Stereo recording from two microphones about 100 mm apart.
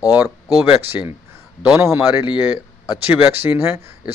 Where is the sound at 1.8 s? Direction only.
25° right (ahead or behind).